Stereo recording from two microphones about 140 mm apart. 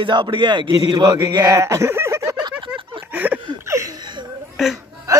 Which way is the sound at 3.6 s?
25° right (ahead or behind).